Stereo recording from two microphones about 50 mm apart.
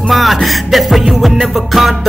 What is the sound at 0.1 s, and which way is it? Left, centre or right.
Music, centre.